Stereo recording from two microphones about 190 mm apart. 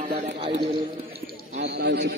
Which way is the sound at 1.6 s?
60° right (ahead or behind).